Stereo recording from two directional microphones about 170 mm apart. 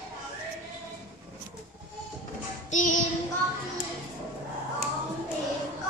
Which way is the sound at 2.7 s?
50° left (ahead or behind).